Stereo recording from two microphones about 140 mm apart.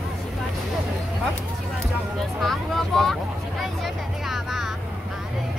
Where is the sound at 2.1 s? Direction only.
Centre (ahead or behind).